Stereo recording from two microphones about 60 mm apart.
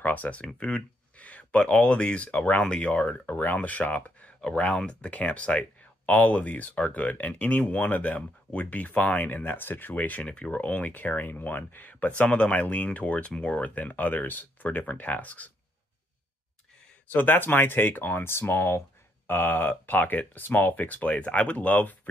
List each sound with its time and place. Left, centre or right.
0.0 s speech: left
17.1 s speech: left